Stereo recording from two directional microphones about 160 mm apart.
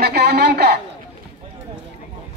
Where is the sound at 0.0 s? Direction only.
90° right.